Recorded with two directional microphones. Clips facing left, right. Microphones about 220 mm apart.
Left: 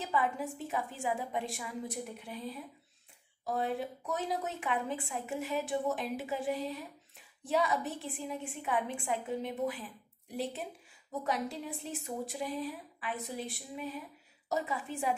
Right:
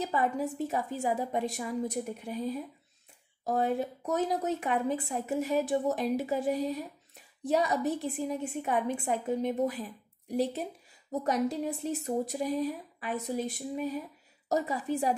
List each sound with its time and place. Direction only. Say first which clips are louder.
0.0 s a woman's voice: right 4 dB; 40° right (ahead or behind)